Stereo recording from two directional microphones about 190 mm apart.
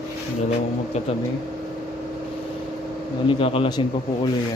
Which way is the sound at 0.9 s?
35° left (ahead or behind).